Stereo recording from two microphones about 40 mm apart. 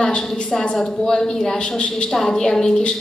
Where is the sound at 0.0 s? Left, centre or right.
Left.